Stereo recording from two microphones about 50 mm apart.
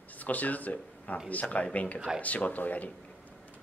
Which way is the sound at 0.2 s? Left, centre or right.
Left.